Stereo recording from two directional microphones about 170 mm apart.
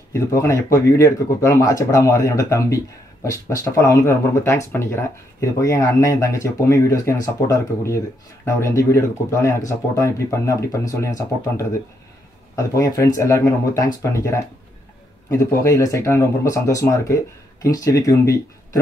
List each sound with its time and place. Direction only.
0.1 s speech: 15° left (ahead or behind)